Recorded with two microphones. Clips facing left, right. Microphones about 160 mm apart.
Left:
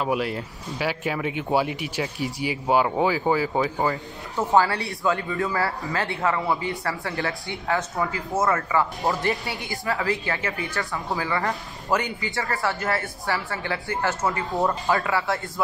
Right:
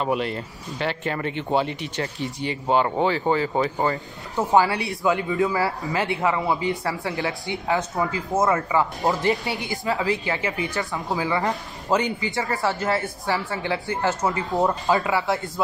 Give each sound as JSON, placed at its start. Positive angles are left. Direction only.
{"t": 0.0, "sound": "speech", "side_deg": 5}
{"t": 4.6, "sound": "speech", "side_deg": -20}
{"t": 14.4, "sound": "speech", "side_deg": 0}
{"t": 14.7, "sound": "speech", "side_deg": -20}